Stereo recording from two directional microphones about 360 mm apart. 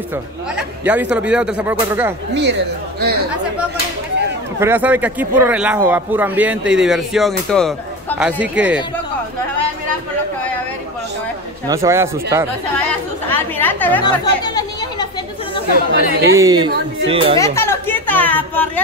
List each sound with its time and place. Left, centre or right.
0.8 s speech: centre
4.6 s speech: centre
11.6 s speech: centre
13.3 s speech: centre
15.9 s speech: right
16.3 s speech: centre
17.4 s a sound: centre